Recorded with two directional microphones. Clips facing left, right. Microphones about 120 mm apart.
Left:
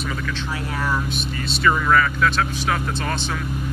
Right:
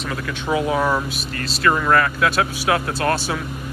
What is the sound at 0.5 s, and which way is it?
Speech, 15° right (ahead or behind).